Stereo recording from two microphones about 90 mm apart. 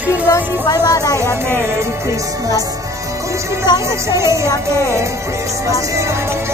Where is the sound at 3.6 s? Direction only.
45° left (ahead or behind).